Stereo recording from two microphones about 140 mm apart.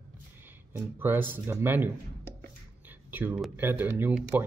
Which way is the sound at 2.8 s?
15° right (ahead or behind).